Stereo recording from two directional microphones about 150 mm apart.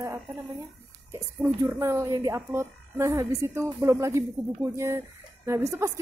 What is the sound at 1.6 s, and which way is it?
A woman's voice, 15° right (ahead or behind).